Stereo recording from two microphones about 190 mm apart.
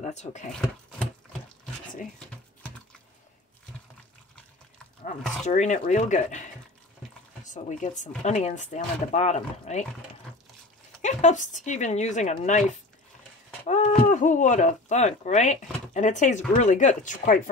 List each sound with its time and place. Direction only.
0.0 s speech: 35° left (ahead or behind)
0.5 s speech: 5° left (ahead or behind)
5.5 s speech: 40° left (ahead or behind)
11.0 s speech: 40° left (ahead or behind)
13.7 s speech: 40° left (ahead or behind)